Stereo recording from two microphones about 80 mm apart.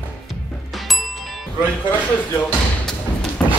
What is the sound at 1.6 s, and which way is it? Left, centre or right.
Speech, centre.